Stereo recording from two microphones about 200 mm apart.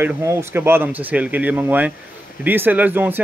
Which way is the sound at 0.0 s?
15° right (ahead or behind).